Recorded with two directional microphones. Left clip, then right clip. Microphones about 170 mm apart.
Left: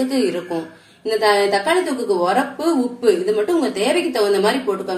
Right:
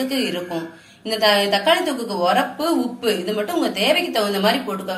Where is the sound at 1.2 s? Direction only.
40° left (ahead or behind).